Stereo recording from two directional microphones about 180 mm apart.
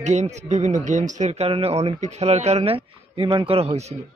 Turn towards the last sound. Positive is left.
turn(degrees=-35)  # may be behind; listen again after turning